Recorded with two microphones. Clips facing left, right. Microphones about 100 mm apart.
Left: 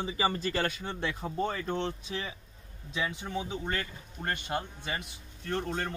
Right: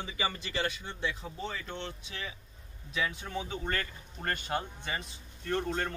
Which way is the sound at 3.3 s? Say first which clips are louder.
Left 1 dB; 10° left (ahead or behind).